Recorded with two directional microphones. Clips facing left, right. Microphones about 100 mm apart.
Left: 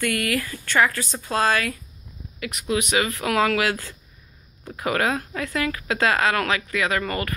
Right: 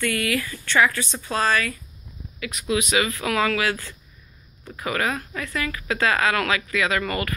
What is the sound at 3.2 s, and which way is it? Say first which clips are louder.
Speech: left 2 dB; 50° left (ahead or behind).